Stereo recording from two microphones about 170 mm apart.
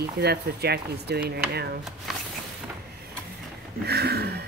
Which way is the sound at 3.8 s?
70° right (ahead or behind).